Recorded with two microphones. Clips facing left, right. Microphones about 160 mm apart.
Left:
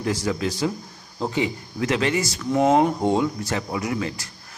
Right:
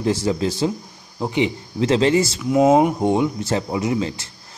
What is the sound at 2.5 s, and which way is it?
Speech, 10° right (ahead or behind).